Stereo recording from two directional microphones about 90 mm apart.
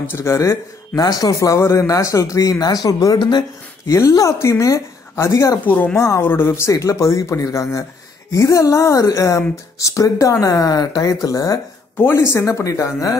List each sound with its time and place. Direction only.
0.0 s a man's voice: 30° left (ahead or behind)
3.2 s speech: 55° left (ahead or behind)
3.8 s a man's voice: 35° left (ahead or behind)
12.0 s a man's voice: 25° left (ahead or behind)